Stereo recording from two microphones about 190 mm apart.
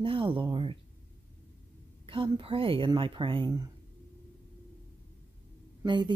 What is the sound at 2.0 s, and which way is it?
A woman's voice, 25° right (ahead or behind).